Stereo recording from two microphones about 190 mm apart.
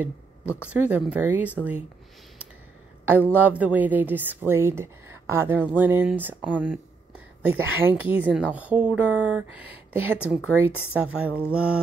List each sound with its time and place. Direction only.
0.0 s speech: 5° right (ahead or behind)
3.3 s speech: 10° right (ahead or behind)
10.5 s speech: 90° right
10.9 s speech: 5° right (ahead or behind)
11.2 s mantra: 5° right (ahead or behind)